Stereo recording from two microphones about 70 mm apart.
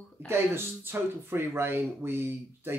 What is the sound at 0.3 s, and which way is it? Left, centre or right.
Speech, right.